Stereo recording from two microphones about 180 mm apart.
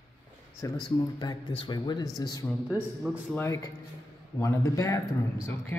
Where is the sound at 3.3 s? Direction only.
15° left (ahead or behind).